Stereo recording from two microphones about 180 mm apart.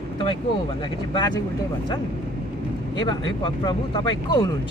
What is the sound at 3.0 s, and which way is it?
Speech, 25° left (ahead or behind).